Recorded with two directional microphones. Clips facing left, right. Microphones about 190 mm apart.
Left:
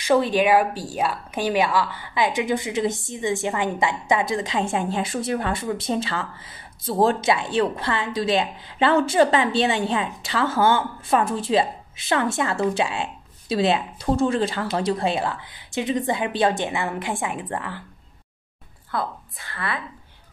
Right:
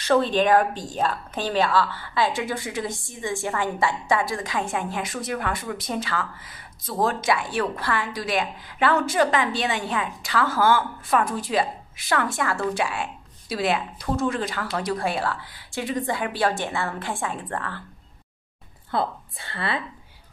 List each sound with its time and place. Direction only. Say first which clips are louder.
0.0 s a woman's voice: left 1 dB; 10° left (ahead or behind)
18.9 s a woman's voice: right 2 dB; 25° right (ahead or behind)